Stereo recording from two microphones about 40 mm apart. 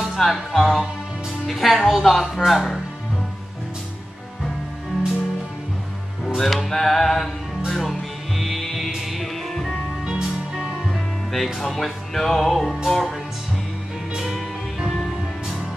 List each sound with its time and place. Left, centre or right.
0.1 s music: centre
6.3 s music: centre
6.7 s music: centre
10.0 s music: centre
11.3 s music: centre
14.1 s music: centre